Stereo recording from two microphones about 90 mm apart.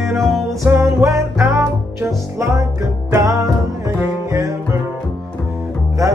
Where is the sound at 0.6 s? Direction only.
30° right (ahead or behind).